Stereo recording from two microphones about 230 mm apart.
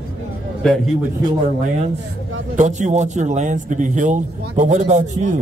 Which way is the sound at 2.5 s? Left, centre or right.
Right.